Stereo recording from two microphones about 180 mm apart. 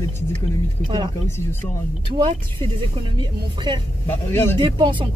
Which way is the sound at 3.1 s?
25° right (ahead or behind).